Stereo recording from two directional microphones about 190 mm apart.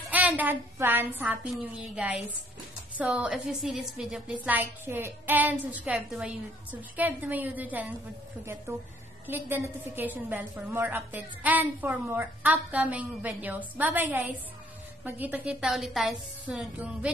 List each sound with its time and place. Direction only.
0.1 s a woman's voice: 10° right (ahead or behind)
9.3 s a woman's voice: 10° right (ahead or behind)
15.0 s a woman's voice: 10° right (ahead or behind)